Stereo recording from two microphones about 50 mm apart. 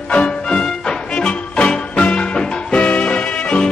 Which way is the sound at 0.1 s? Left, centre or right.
Centre.